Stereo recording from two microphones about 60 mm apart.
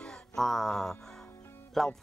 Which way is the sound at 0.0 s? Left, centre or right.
Centre.